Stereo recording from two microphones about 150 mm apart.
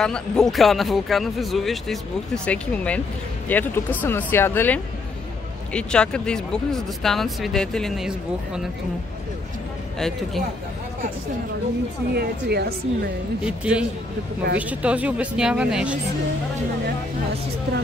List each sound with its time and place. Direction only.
0.0 s speech: 5° left (ahead or behind)
9.9 s speech: 5° left (ahead or behind)
12.1 s speech: 90° right
13.5 s speech: 5° right (ahead or behind)